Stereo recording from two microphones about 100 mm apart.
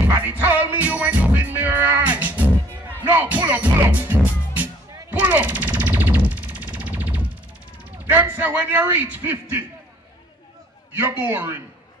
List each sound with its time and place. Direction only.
0.2 s music: 20° right (ahead or behind)
5.1 s a sound: 15° right (ahead or behind)
8.1 s a man's voice: 20° right (ahead or behind)
11.0 s a man's voice: 20° right (ahead or behind)